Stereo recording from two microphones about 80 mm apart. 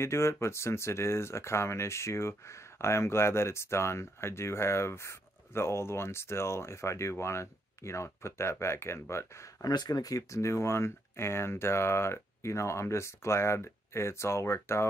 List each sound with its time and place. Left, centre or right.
0.0 s speech: left
9.7 s speech: left